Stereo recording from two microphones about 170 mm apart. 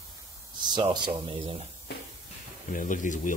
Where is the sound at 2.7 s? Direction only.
50° left (ahead or behind).